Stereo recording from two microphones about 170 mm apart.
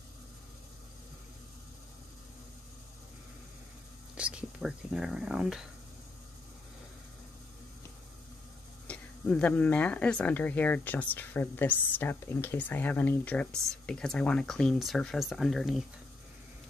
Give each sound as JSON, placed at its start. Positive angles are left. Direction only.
{"t": 4.2, "sound": "speech", "side_deg": -5}
{"t": 8.8, "sound": "speech", "side_deg": 5}